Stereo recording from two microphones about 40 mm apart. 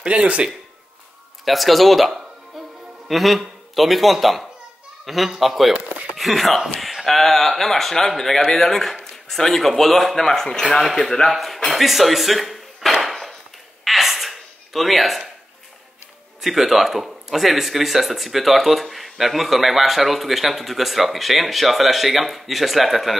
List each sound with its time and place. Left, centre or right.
0.0 s speech: right
1.4 s a man's voice: centre
13.0 s wood: centre
13.8 s a sound: centre
16.3 s a man's voice: centre